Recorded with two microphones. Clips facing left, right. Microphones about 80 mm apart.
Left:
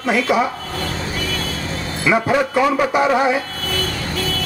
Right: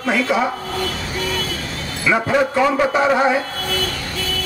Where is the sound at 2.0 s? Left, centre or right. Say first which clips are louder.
Even; centre.